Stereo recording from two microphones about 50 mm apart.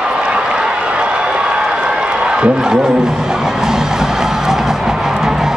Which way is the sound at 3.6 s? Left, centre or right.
Centre.